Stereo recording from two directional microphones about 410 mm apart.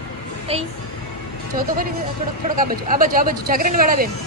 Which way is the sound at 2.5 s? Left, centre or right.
Centre.